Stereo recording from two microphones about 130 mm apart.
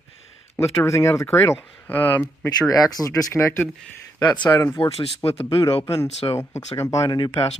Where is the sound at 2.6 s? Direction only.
25° left (ahead or behind).